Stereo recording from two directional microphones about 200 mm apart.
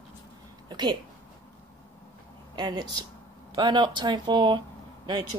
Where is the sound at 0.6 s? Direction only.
20° right (ahead or behind).